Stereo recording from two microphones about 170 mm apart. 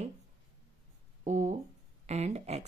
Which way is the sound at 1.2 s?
45° right (ahead or behind).